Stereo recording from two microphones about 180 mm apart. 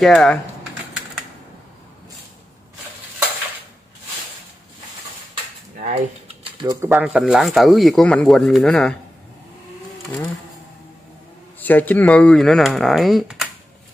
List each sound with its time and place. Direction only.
0.0 s speech: centre (ahead or behind)
5.9 s a sound: 30° right (ahead or behind)
6.7 s speech: 15° right (ahead or behind); by 8.9 s 5° left (ahead or behind)
11.6 s speech: 10° left (ahead or behind)